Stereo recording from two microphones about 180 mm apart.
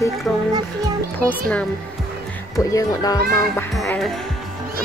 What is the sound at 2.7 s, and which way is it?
Speech, 20° left (ahead or behind).